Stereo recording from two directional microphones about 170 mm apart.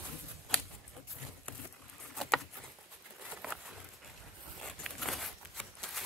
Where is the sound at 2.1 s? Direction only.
Centre (ahead or behind).